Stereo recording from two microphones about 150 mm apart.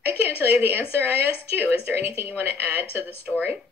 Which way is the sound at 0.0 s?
15° right (ahead or behind).